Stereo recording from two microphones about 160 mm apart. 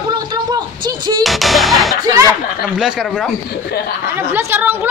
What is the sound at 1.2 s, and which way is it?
Speech, centre (ahead or behind).